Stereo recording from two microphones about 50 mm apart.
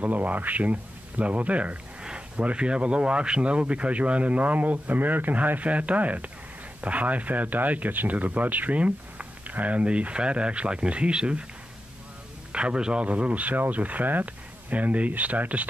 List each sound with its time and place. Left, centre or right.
0.0 s speech: right
12.5 s speech: centre